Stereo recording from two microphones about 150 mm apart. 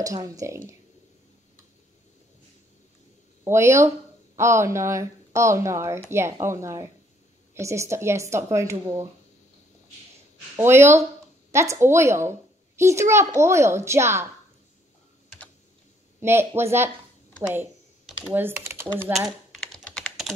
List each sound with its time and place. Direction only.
0.0 s speech: 20° right (ahead or behind)
3.4 s a child's voice: 20° right (ahead or behind)
10.5 s a child's voice: 15° right (ahead or behind)
16.2 s a child's voice: 15° right (ahead or behind)
17.5 s a sound: 5° right (ahead or behind)
18.3 s a child's voice: 15° right (ahead or behind)
19.1 s typing: centre (ahead or behind)